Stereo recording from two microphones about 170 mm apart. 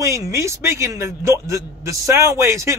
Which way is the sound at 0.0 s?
15° right (ahead or behind).